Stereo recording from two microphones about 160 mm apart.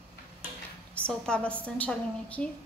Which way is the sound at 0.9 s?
5° left (ahead or behind).